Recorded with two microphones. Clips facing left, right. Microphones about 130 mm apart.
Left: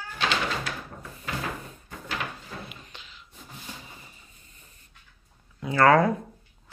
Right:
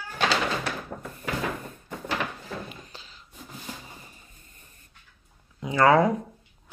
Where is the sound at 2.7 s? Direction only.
35° right (ahead or behind).